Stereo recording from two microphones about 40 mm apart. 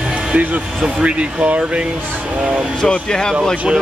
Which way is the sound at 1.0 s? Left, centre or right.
Right.